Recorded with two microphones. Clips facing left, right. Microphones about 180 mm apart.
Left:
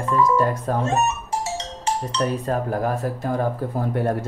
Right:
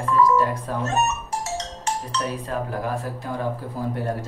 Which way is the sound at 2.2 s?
45° left (ahead or behind).